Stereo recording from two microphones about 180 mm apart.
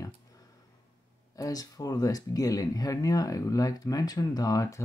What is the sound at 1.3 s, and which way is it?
Speech, 20° left (ahead or behind).